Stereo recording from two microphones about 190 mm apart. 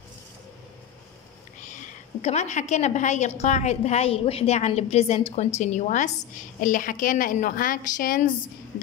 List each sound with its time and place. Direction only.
2.2 s a woman's voice: 35° left (ahead or behind)